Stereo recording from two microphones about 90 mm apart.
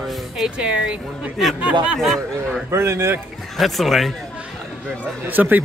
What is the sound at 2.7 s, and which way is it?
Speech, 30° right (ahead or behind).